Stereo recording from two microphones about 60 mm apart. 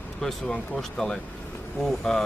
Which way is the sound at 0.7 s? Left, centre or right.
Centre.